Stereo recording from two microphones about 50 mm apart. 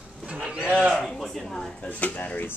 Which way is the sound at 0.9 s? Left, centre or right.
Centre.